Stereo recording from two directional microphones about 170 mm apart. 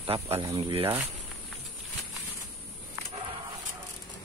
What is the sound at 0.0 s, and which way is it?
Speech, 35° right (ahead or behind).